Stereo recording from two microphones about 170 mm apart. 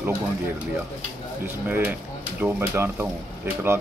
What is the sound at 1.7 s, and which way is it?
Speech, 10° right (ahead or behind).